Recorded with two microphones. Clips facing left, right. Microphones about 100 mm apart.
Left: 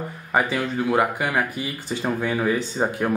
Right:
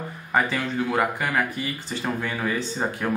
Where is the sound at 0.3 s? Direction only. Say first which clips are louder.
Left 1 dB; 10° left (ahead or behind).